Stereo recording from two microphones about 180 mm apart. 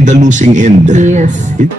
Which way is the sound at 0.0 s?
45° right (ahead or behind).